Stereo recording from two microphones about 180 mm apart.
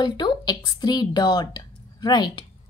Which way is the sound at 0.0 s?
25° left (ahead or behind).